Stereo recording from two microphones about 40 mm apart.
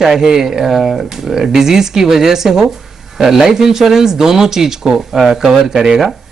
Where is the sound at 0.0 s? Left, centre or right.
Centre.